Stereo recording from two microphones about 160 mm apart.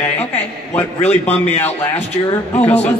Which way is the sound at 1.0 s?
45° left (ahead or behind).